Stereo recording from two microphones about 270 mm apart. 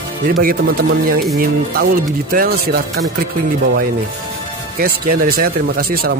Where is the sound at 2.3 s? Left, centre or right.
Right.